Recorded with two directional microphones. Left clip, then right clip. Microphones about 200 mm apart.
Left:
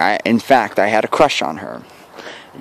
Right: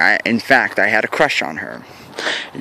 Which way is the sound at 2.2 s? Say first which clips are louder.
Right 13 dB; 25° right (ahead or behind).